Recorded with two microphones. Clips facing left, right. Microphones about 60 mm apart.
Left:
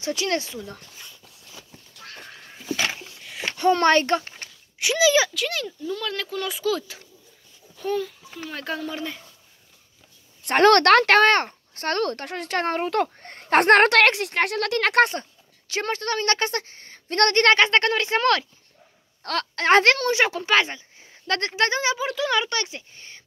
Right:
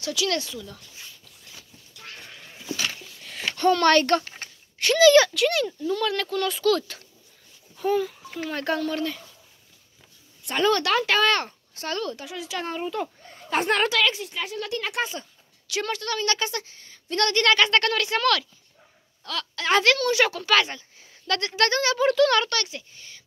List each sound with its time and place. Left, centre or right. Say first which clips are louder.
0.0 s speech: left 1 dB; left
3.7 s speech: even; left
4.7 s speech: right 4 dB; centre
7.7 s a child's voice: right 3 dB; centre
10.4 s speech: left 7 dB; left
15.1 s speech: left 5 dB; left
19.2 s speech: left 6 dB; left
21.5 s speech: even; left
21.9 s speech: right 5 dB; centre; by 23.2 s left